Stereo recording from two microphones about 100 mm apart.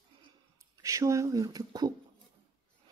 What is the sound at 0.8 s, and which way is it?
Speech, 35° right (ahead or behind).